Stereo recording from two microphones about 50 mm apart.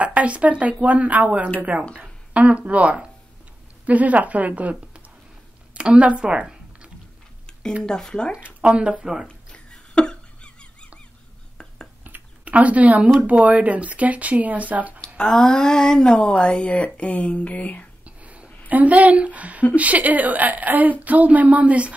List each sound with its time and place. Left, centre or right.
0.0 s a woman's voice: right
7.8 s speech: centre
8.5 s speech: right
8.9 s speech: centre
9.3 s a sound: left
12.0 s a sound: right
13.3 s speech: right
15.0 s speech: centre
18.0 s whispering: right
18.7 s a woman's voice: right